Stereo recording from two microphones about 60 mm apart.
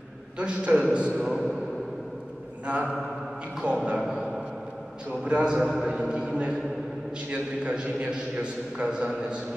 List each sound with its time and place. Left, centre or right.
0.4 s a man's voice: right
2.6 s a man's voice: right
4.0 s speech: centre
5.2 s a man's voice: centre